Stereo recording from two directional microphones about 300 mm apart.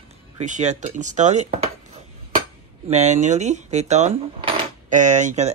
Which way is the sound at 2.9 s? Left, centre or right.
Right.